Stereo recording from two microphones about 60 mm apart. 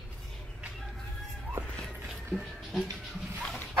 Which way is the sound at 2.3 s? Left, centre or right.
Centre.